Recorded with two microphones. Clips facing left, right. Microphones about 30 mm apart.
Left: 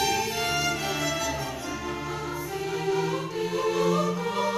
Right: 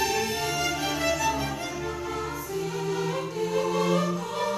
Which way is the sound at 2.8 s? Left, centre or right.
Centre.